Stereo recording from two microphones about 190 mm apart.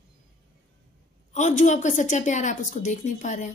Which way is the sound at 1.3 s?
40° left (ahead or behind).